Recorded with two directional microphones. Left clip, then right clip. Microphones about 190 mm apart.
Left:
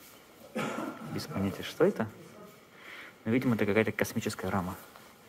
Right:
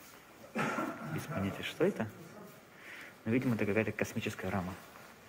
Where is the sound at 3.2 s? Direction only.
20° left (ahead or behind).